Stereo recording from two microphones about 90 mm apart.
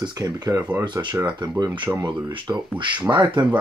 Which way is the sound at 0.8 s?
60° right (ahead or behind).